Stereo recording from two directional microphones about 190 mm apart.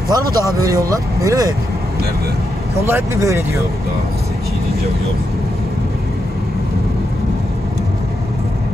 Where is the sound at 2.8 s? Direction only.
15° right (ahead or behind).